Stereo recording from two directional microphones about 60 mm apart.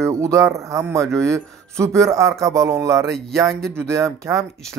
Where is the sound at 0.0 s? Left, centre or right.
Right.